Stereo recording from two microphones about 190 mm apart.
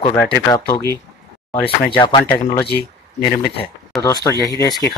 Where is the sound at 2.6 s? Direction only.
55° left (ahead or behind).